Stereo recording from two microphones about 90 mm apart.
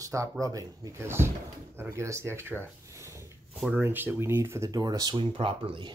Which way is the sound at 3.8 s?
25° right (ahead or behind).